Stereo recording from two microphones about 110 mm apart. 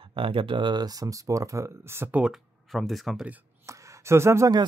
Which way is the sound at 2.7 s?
Centre (ahead or behind).